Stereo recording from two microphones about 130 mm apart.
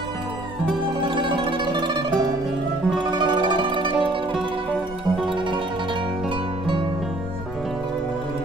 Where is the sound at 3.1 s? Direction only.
35° right (ahead or behind).